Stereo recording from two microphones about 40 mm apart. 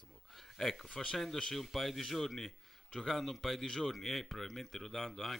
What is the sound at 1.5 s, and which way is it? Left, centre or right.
Speech, centre.